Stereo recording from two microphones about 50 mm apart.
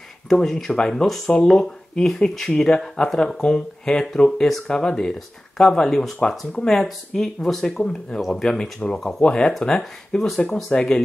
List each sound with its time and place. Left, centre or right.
0.3 s speech: centre
10.4 s speech: centre